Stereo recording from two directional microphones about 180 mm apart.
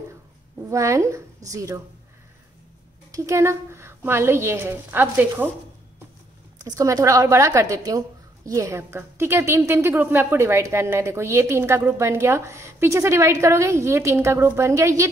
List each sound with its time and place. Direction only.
0.7 s a woman's voice: 15° right (ahead or behind)
3.1 s a woman's voice: 15° right (ahead or behind)
6.6 s a woman's voice: 20° right (ahead or behind)